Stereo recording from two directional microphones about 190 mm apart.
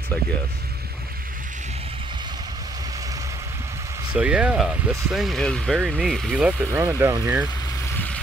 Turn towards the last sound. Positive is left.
turn(degrees=-15)  # may be behind; listen again after turning